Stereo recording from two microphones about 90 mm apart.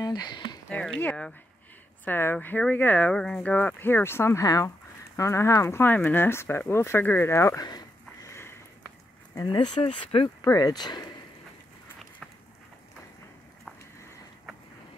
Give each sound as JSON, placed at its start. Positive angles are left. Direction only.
{"t": 0.0, "sound": "speech", "side_deg": 50}
{"t": 0.7, "sound": "speech", "side_deg": 15}
{"t": 2.0, "sound": "speech", "side_deg": 20}
{"t": 3.5, "sound": "speech", "side_deg": 20}
{"t": 7.6, "sound": "a sound", "side_deg": 50}
{"t": 8.3, "sound": "sniff", "side_deg": 30}
{"t": 9.3, "sound": "speech", "side_deg": 50}
{"t": 10.4, "sound": "speech", "side_deg": 45}